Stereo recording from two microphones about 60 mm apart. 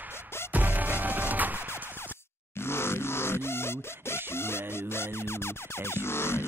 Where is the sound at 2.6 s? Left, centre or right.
Left.